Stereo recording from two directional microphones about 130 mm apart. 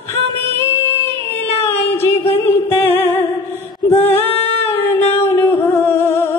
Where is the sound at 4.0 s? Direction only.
15° left (ahead or behind).